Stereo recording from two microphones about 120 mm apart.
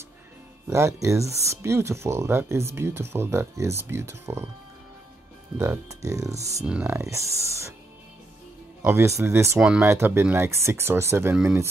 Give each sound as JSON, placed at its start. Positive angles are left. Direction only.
{"t": 0.7, "sound": "speech", "side_deg": -25}
{"t": 5.6, "sound": "speech", "side_deg": -25}
{"t": 6.6, "sound": "speech", "side_deg": -10}
{"t": 7.0, "sound": "speech", "side_deg": -25}
{"t": 8.8, "sound": "speech", "side_deg": -25}
{"t": 9.6, "sound": "speech", "side_deg": -10}
{"t": 9.8, "sound": "speech", "side_deg": -20}